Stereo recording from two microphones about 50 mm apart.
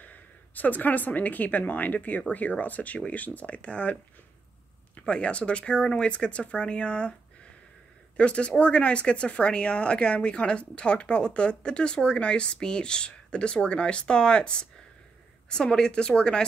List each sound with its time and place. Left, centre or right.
0.0 s speech: left
5.0 s speech: left
8.2 s speech: left